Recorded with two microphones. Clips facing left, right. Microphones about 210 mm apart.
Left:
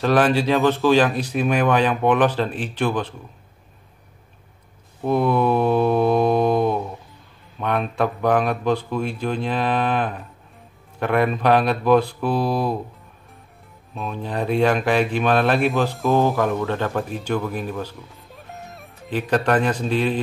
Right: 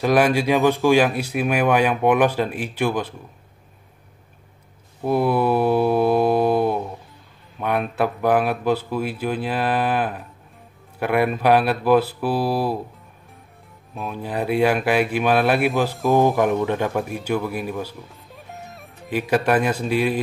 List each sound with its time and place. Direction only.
0.0 s speech: 10° right (ahead or behind)
5.0 s mantra: 5° right (ahead or behind)
7.5 s speech: 5° right (ahead or behind)
13.9 s speech: 5° right (ahead or behind)